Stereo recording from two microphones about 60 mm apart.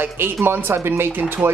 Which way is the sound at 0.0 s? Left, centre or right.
Right.